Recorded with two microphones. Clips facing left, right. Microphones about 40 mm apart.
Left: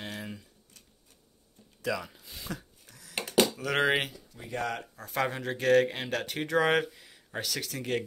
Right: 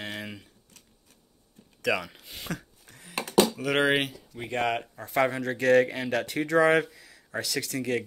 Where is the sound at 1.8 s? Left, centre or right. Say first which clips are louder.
Right 5 dB; right.